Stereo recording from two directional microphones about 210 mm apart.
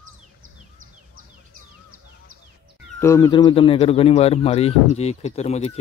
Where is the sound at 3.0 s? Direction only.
15° left (ahead or behind).